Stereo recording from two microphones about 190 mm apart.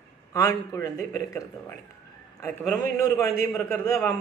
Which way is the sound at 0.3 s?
20° left (ahead or behind).